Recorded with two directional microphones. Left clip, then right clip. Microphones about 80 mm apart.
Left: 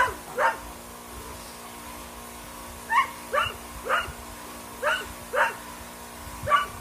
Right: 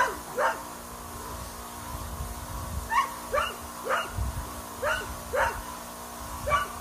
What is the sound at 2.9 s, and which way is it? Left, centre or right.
Dog, right.